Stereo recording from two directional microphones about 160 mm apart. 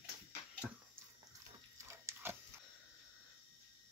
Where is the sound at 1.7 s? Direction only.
15° right (ahead or behind).